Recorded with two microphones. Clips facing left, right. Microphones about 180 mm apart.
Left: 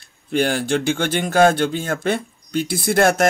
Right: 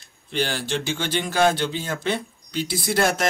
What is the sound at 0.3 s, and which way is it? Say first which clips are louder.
Speech: left 6 dB; 50° left (ahead or behind).